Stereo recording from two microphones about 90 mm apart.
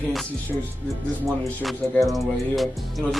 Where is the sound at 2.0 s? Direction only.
Centre (ahead or behind).